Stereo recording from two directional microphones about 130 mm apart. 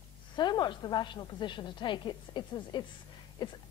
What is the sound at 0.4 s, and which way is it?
A man's voice, 35° left (ahead or behind).